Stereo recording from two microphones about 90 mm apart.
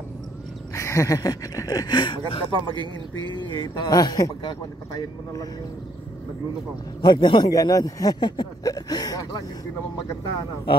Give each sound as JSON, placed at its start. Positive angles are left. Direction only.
{"t": 0.7, "sound": "speech", "side_deg": 35}
{"t": 7.0, "sound": "speech", "side_deg": 50}
{"t": 7.5, "sound": "speech", "side_deg": 45}